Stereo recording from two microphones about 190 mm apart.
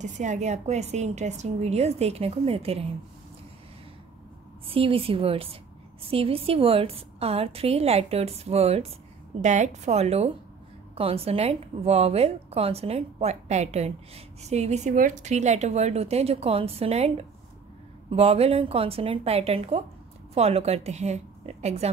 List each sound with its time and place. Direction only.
0.0 s a woman's voice: 40° right (ahead or behind)
4.6 s a woman's voice: 30° right (ahead or behind)